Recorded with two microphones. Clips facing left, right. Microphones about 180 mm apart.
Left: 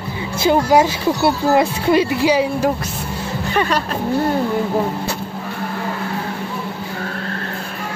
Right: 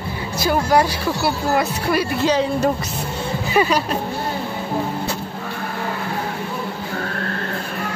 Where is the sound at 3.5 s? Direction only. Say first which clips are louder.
Right 1 dB; 10° right (ahead or behind).